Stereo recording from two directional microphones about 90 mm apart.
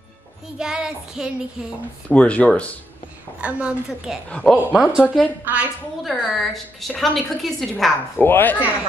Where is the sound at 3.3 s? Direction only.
15° right (ahead or behind).